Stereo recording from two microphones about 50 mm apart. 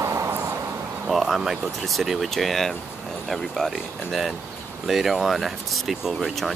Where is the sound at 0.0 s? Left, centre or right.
Right.